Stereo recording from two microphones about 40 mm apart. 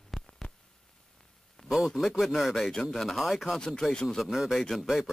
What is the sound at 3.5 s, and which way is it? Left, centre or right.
Speech, centre.